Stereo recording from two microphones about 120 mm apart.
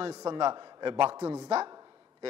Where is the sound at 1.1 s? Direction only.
25° right (ahead or behind).